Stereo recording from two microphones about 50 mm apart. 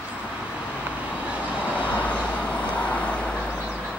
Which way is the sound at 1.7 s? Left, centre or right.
Left.